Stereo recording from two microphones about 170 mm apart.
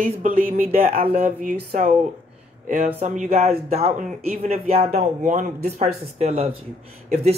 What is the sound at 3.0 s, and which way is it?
Speech, 45° right (ahead or behind).